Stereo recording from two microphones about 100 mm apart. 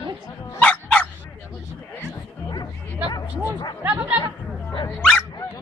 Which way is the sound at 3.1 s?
45° left (ahead or behind).